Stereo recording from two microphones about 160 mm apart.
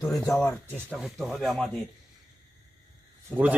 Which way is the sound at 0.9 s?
Centre (ahead or behind).